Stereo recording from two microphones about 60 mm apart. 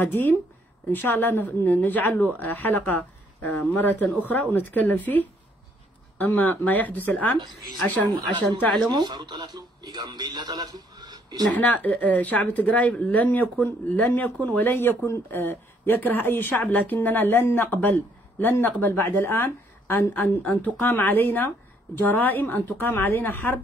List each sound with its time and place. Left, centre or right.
0.0 s speech: left
11.5 s speech: left